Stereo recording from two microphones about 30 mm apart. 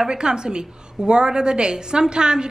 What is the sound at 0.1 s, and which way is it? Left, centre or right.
A woman's voice, right.